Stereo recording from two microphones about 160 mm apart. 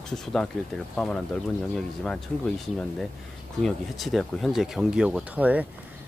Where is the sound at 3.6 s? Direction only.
Centre (ahead or behind).